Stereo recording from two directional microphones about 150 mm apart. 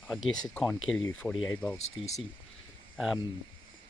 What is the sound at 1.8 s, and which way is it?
Speech, 45° left (ahead or behind).